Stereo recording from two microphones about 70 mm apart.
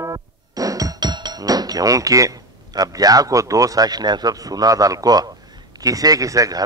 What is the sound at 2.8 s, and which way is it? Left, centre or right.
A man's voice, right.